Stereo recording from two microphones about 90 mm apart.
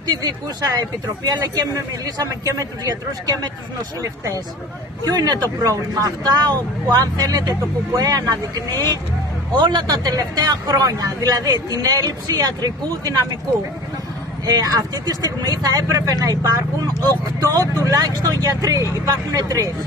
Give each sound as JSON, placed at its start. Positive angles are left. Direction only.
{"t": 0.1, "sound": "speech", "side_deg": -45}
{"t": 5.0, "sound": "speech", "side_deg": -50}
{"t": 9.6, "sound": "speech", "side_deg": -60}
{"t": 14.4, "sound": "speech", "side_deg": -45}